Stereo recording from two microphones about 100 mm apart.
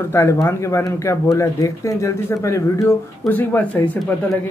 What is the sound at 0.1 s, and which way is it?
Speech, 25° left (ahead or behind).